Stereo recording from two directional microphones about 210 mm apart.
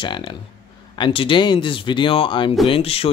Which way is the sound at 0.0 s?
25° left (ahead or behind).